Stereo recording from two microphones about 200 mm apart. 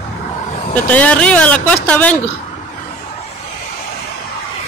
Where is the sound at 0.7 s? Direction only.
10° left (ahead or behind).